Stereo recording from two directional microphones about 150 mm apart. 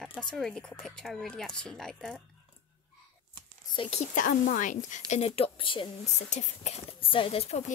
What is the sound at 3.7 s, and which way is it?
Speech, 40° left (ahead or behind).